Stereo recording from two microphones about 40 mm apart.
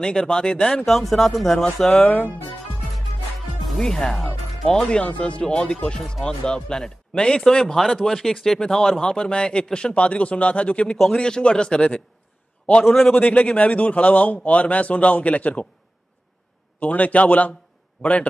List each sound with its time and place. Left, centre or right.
0.0 s speech: centre
0.8 s speech: centre
2.0 s speech: left
3.8 s speech: centre
4.8 s speech: left
5.5 s speech: centre
11.1 s speech: centre
12.9 s a man's voice: left
16.8 s a man's voice: left